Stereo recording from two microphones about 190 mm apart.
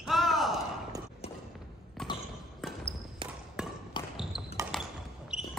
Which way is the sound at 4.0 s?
25° left (ahead or behind).